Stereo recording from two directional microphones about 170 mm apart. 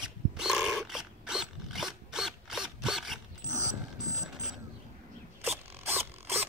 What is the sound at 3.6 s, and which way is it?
Mechanisms, 45° right (ahead or behind).